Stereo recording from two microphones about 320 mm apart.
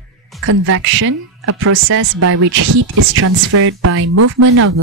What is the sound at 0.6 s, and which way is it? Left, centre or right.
A woman's voice, right.